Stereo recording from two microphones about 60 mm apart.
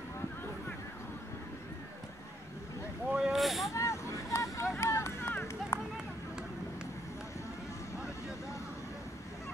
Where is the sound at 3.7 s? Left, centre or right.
Left.